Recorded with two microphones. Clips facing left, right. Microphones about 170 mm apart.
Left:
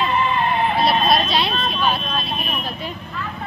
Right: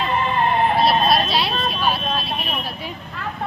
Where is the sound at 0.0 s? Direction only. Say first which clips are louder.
Even; 45° right (ahead or behind).